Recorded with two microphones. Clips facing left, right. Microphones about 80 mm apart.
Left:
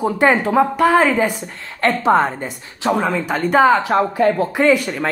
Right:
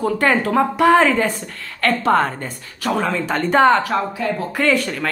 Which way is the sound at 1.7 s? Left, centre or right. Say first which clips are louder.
Left 2 dB; centre.